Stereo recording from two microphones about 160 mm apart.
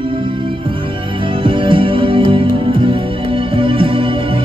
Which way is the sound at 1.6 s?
35° right (ahead or behind).